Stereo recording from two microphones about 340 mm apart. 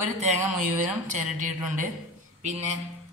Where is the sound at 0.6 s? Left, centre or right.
Right.